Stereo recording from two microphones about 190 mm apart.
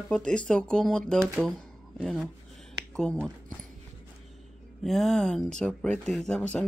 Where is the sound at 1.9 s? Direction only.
Centre (ahead or behind).